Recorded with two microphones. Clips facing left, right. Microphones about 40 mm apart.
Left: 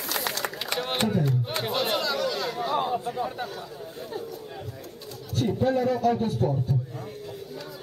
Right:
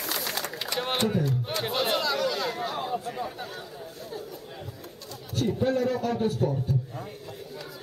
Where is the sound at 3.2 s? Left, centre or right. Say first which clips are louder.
Left 4 dB; centre.